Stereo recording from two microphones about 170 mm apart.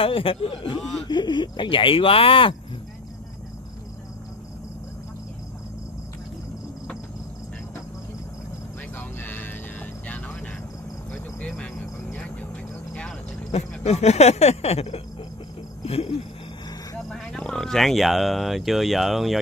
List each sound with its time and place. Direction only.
0.0 s speech: 35° left (ahead or behind)
8.9 s music: 10° left (ahead or behind)
11.1 s vehicle: 5° left (ahead or behind)
13.5 s speech: 40° left (ahead or behind)
15.8 s a sound: 35° left (ahead or behind)
17.1 s speech: 5° left (ahead or behind)